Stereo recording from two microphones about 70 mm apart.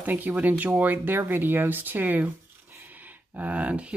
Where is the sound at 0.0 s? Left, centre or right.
Right.